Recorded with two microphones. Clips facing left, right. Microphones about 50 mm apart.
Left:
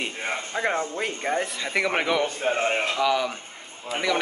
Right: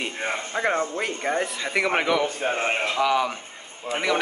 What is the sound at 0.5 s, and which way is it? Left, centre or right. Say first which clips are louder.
Speech: right 1 dB; centre.